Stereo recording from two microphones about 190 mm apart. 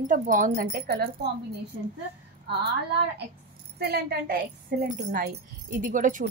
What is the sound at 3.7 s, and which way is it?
A child's voice, 55° right (ahead or behind).